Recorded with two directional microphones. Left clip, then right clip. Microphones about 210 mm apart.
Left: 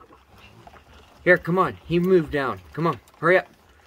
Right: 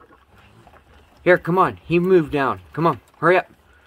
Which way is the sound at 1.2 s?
30° right (ahead or behind).